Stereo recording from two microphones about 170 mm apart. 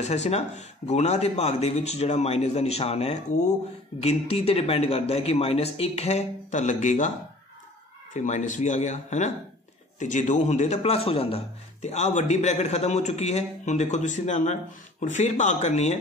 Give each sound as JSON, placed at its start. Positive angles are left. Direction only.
{"t": 0.0, "sound": "speech", "side_deg": 40}
{"t": 8.1, "sound": "speech", "side_deg": 45}